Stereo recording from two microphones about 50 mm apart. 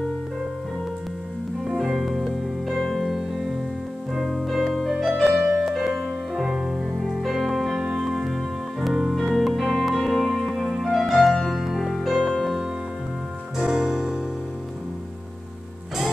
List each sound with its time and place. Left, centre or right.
1.7 s music: centre